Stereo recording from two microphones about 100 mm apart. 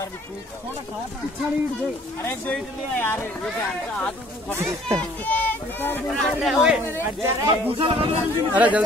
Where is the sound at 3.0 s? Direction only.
20° left (ahead or behind).